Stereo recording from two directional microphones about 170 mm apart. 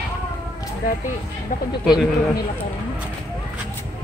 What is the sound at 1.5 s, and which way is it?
Speech, 55° left (ahead or behind).